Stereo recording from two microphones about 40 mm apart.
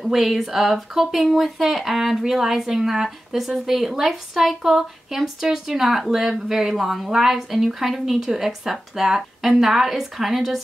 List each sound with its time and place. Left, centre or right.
0.0 s speech: centre